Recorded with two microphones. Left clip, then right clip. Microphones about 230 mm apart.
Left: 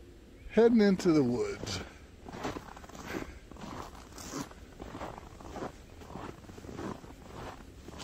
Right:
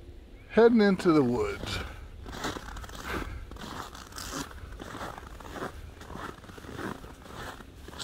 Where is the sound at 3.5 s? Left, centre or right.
Right.